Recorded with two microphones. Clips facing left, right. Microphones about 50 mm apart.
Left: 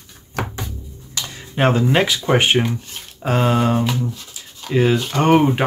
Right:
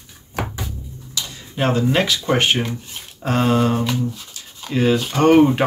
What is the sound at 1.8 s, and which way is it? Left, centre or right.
Speech, centre.